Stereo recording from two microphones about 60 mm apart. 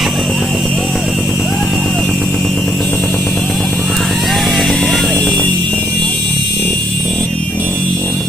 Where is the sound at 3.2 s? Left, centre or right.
Centre.